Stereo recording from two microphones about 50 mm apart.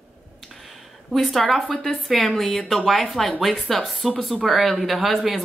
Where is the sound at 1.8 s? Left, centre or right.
Centre.